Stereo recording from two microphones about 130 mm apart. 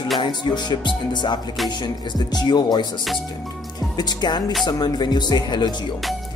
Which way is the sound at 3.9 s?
35° left (ahead or behind).